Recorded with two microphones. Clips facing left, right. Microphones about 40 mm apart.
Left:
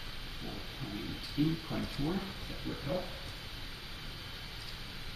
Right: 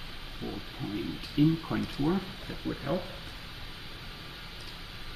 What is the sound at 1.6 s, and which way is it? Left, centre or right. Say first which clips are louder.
Speech: right 6 dB; right.